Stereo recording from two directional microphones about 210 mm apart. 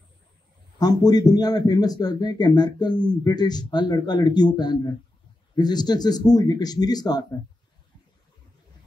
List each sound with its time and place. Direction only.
0.7 s speech: 20° left (ahead or behind)